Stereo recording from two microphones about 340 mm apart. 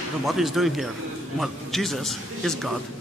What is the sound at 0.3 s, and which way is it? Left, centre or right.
A man's voice, centre.